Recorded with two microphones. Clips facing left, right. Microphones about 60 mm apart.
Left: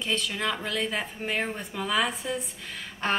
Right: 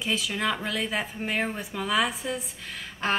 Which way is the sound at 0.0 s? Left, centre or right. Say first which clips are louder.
Right 1 dB; centre.